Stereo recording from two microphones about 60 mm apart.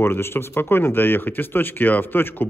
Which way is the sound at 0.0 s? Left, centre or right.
Left.